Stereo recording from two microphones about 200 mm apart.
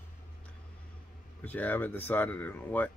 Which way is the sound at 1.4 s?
10° left (ahead or behind).